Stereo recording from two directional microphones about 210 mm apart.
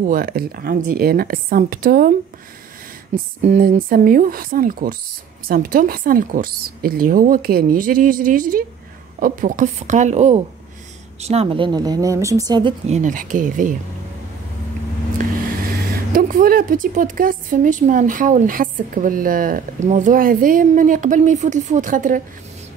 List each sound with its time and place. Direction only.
0.0 s a woman's voice: 45° right (ahead or behind); by 12.7 s 20° right (ahead or behind)
12.8 s a woman's voice: 35° right (ahead or behind)
16.1 s a woman's voice: 40° right (ahead or behind)